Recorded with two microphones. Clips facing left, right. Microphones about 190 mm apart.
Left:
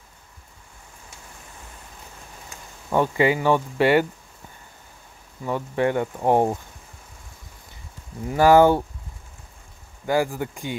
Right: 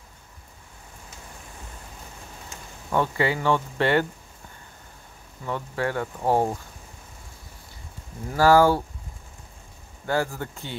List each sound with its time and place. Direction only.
2.9 s speech: 15° left (ahead or behind)
5.4 s speech: 15° left (ahead or behind)
8.3 s speech: 20° left (ahead or behind)
10.0 s speech: 15° left (ahead or behind)